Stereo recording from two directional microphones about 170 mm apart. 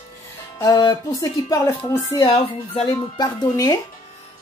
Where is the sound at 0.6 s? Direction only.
25° left (ahead or behind).